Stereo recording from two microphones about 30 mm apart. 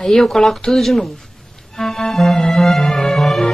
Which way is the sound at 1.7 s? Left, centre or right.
Centre.